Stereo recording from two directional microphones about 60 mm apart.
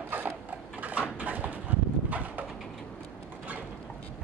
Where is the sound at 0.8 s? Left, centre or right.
Right.